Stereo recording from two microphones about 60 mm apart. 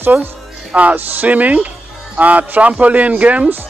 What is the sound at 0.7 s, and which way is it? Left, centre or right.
A man's voice, right.